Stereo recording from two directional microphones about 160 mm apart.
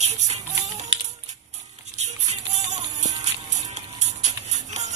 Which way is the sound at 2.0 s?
45° right (ahead or behind).